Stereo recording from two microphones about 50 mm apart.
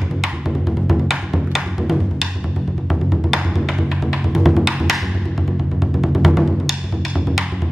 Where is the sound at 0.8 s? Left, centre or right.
Centre.